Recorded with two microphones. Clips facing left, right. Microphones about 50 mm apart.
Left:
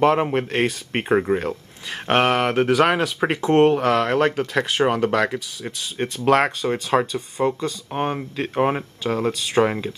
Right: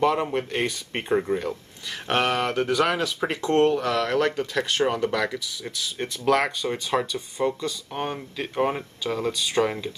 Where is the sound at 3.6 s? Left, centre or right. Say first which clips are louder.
Left 5 dB; left.